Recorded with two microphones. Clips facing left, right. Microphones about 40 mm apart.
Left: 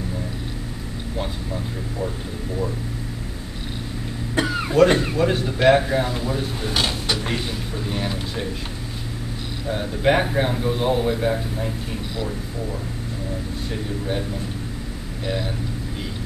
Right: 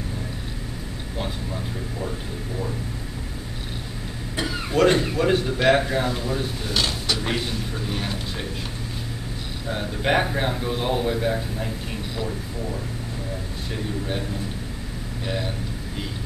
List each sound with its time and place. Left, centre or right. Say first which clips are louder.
4.4 s cough: left 5 dB; centre
4.7 s a man's voice: left 2 dB; centre
6.6 s speech: left 2 dB; centre
7.9 s a man's voice: left 2 dB; centre
9.7 s a man's voice: left 3 dB; centre
11.1 s speech: left 2 dB; centre
15.2 s a man's voice: left 2 dB; centre